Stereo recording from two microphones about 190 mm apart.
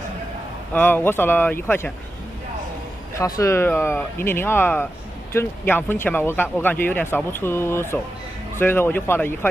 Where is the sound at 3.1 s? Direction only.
15° left (ahead or behind).